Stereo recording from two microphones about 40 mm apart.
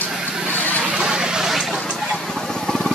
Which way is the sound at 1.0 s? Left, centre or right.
Centre.